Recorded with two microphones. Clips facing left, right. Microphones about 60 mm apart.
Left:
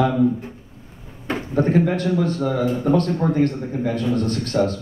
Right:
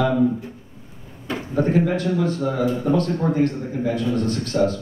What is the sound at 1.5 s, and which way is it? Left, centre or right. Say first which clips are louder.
A man's voice: left 1 dB; left.